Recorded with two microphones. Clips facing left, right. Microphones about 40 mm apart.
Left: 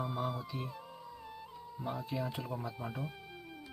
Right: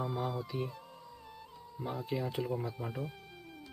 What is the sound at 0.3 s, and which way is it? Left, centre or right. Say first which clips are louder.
Speech: right 3 dB; centre.